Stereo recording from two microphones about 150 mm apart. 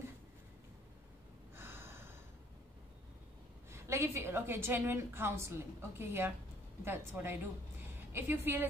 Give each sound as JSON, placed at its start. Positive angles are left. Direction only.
{"t": 1.5, "sound": "snort", "side_deg": -15}
{"t": 3.7, "sound": "a woman's voice", "side_deg": -15}